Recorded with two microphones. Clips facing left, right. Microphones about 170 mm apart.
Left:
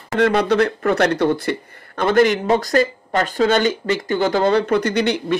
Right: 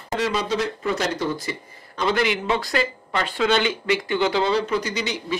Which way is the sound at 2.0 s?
50° left (ahead or behind).